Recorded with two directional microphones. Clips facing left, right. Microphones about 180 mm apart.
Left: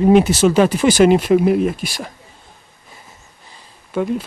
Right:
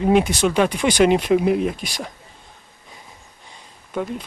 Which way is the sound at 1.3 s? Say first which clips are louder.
Left 4 dB; 50° left (ahead or behind).